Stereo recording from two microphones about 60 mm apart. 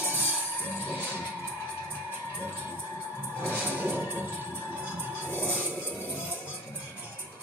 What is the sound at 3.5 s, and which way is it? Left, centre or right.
Music, right.